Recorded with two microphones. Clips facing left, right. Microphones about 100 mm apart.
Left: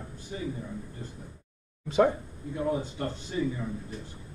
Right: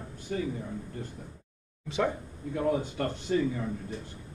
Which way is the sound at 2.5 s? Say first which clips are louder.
Right 2 dB; 60° right (ahead or behind).